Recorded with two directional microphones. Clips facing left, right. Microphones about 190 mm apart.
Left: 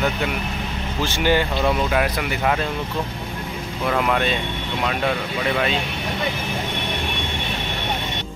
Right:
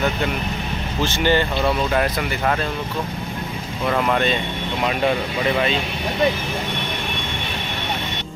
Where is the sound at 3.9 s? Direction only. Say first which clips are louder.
Right 1 dB; centre (ahead or behind).